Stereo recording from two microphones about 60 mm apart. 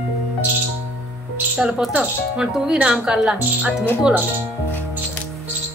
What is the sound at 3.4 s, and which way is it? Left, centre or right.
Speech, right.